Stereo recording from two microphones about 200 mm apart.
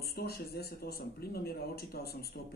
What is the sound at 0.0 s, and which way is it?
Speech, 50° left (ahead or behind).